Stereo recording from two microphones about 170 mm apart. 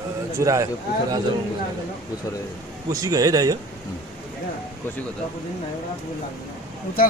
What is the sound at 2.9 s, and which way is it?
Speech, 20° right (ahead or behind).